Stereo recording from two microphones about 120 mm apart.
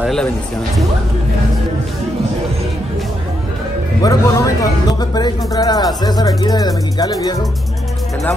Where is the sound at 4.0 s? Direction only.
30° left (ahead or behind).